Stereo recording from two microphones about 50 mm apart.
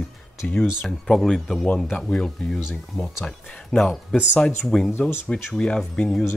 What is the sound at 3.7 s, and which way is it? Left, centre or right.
Speech, centre.